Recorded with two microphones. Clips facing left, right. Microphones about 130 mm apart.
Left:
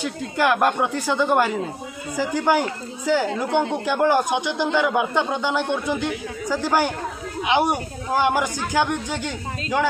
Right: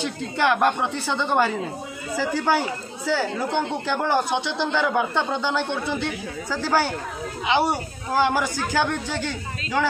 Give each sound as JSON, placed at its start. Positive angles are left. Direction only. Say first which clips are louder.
{"t": 0.0, "sound": "speech", "louder": "left 1 dB", "side_deg": 5}